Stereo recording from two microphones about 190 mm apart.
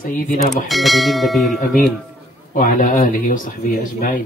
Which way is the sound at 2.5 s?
45° left (ahead or behind).